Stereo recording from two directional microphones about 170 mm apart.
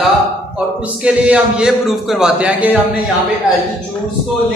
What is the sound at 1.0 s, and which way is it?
A man's voice, 5° right (ahead or behind).